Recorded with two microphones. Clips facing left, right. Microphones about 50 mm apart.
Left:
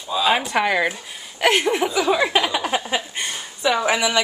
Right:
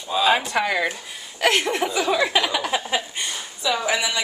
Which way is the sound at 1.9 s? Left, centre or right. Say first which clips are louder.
Even; centre.